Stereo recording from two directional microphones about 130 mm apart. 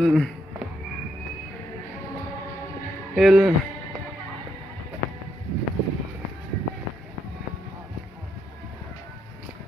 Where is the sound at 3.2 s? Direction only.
5° right (ahead or behind).